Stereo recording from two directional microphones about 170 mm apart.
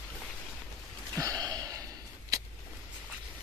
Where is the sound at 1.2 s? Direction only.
20° right (ahead or behind).